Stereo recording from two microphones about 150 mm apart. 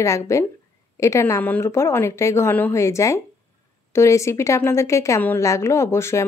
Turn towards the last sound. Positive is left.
turn(degrees=15)  # may be behind; listen again after turning